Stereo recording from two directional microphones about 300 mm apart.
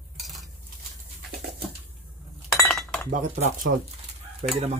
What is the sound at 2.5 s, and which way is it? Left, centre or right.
Chink, centre.